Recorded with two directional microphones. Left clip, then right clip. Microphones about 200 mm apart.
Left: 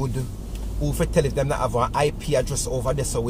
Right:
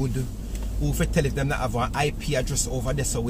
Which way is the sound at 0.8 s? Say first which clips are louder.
Left 4 dB; 15° left (ahead or behind).